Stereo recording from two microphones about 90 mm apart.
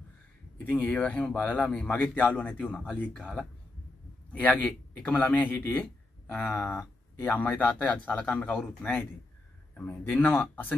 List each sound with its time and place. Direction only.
0.7 s speech: 15° left (ahead or behind)
6.4 s speech: 30° left (ahead or behind); by 9.0 s 10° left (ahead or behind)
10.0 s speech: 15° left (ahead or behind)